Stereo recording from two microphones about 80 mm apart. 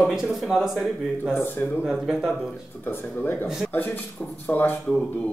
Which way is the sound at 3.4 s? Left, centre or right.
Centre.